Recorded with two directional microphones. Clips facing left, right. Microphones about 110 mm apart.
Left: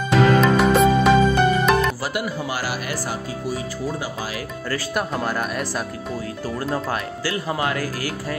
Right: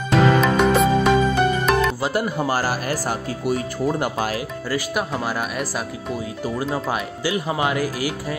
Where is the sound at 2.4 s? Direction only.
45° right (ahead or behind).